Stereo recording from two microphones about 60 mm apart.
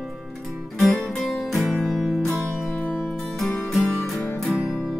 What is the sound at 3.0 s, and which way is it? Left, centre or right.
Music, centre.